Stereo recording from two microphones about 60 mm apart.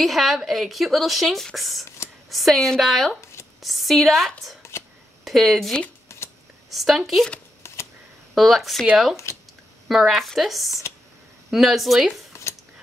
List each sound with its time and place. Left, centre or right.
0.0 s a woman's voice: centre
3.2 s shuffling cards: left
3.6 s a woman's voice: centre
6.0 s a sound: left
6.7 s a woman's voice: centre
7.6 s camera: left
8.4 s a woman's voice: centre
9.1 s speech: left
9.8 s a woman's voice: centre